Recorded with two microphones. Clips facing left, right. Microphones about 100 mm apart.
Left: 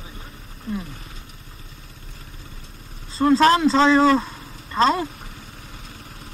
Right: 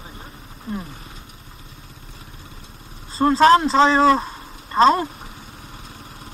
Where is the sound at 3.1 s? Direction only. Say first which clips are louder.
Right 2 dB; 20° right (ahead or behind).